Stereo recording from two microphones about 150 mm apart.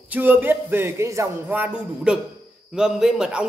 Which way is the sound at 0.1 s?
15° right (ahead or behind).